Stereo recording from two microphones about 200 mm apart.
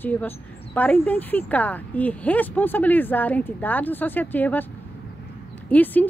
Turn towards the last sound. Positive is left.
turn(degrees=10)  # may be behind; listen again after turning